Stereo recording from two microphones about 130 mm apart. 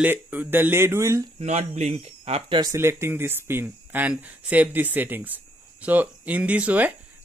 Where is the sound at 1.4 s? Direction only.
60° right (ahead or behind).